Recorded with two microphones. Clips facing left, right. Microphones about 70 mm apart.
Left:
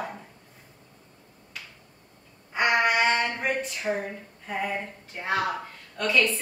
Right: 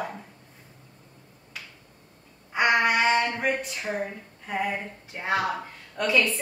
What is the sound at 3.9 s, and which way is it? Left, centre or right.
Speech, centre.